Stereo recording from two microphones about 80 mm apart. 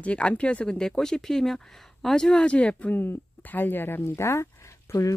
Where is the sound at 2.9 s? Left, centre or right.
Left.